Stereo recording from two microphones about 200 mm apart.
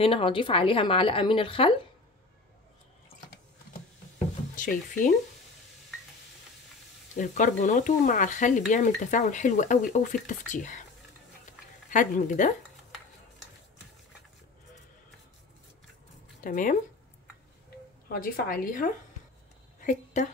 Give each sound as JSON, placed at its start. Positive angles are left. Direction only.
{"t": 0.0, "sound": "a woman's voice", "side_deg": 25}
{"t": 4.6, "sound": "speech", "side_deg": 40}
{"t": 7.2, "sound": "speech", "side_deg": 40}
{"t": 11.9, "sound": "speech", "side_deg": 40}
{"t": 16.4, "sound": "a woman's voice", "side_deg": 40}
{"t": 18.0, "sound": "a woman's voice", "side_deg": 45}
{"t": 19.8, "sound": "a sound", "side_deg": 40}